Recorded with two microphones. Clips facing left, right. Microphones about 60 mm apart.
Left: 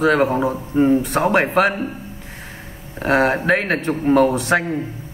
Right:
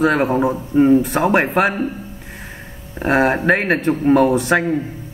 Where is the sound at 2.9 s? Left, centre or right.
Centre.